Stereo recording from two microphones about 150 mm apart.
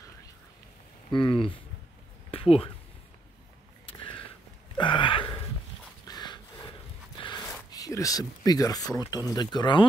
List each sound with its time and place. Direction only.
1.1 s speech: 35° left (ahead or behind)
4.7 s a sound: 35° left (ahead or behind)
7.7 s speech: 25° left (ahead or behind)